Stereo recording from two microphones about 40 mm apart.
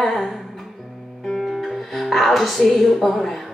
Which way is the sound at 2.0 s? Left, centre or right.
Centre.